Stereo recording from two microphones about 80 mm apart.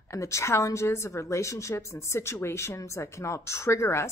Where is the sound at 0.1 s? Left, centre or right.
Left.